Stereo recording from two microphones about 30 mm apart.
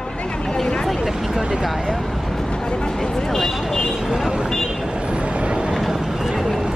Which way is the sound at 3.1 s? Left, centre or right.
Centre.